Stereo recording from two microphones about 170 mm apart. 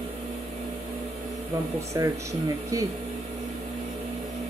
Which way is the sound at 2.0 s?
20° right (ahead or behind).